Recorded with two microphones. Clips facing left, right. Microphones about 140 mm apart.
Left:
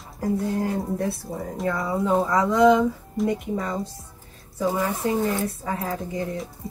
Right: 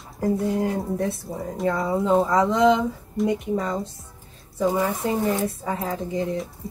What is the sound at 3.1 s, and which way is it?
Speech, centre (ahead or behind).